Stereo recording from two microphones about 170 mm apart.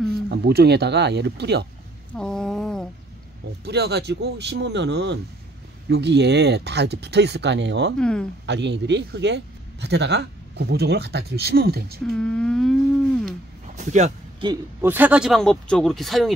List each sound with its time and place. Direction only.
0.3 s speech: 65° right (ahead or behind)
2.1 s a sound: 5° left (ahead or behind)
3.6 s a man's voice: 75° right (ahead or behind)
8.0 s speech: 5° left (ahead or behind)
8.5 s a man's voice: 90° right; by 12.0 s 65° right (ahead or behind)
12.1 s speech: 5° left (ahead or behind)
13.7 s speech: 45° right (ahead or behind)
14.8 s speech: 10° right (ahead or behind)